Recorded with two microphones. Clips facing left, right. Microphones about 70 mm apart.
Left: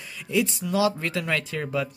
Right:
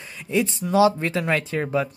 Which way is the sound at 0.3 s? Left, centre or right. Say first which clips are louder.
Right 3 dB; right.